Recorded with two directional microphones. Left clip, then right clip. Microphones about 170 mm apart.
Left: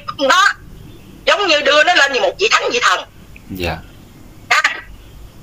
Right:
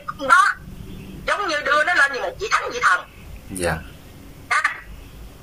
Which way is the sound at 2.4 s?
60° left (ahead or behind).